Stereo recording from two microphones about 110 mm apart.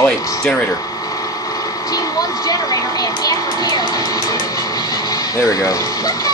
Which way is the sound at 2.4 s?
35° left (ahead or behind).